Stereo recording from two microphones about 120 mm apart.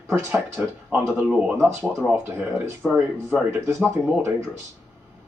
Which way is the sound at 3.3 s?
20° right (ahead or behind).